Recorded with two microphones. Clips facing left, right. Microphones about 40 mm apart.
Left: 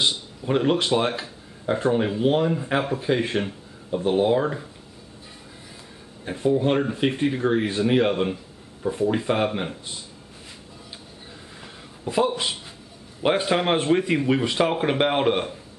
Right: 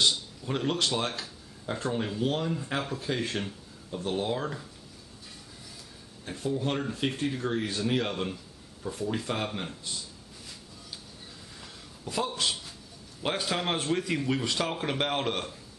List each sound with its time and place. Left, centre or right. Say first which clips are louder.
0.0 s speech: left 3 dB; left
6.2 s speech: left 9 dB; left
11.6 s a sound: left 9 dB; left
13.2 s speech: left 9 dB; left